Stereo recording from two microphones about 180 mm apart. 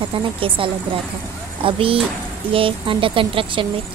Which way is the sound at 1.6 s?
30° right (ahead or behind).